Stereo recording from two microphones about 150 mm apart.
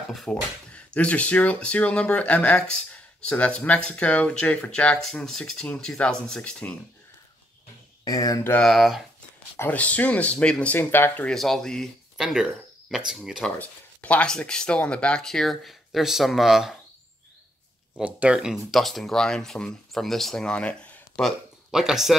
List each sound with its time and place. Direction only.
0.1 s speech: 5° left (ahead or behind)
8.0 s speech: 25° left (ahead or behind)
8.5 s speech: centre (ahead or behind)
9.6 s speech: 10° left (ahead or behind)
13.6 s speech: 10° left (ahead or behind)
17.9 s speech: 5° right (ahead or behind); by 21.3 s 10° left (ahead or behind)
21.6 s speech: 5° right (ahead or behind)